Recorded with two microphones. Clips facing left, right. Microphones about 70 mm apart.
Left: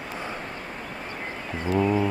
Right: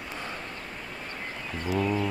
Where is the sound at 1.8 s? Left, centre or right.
Centre.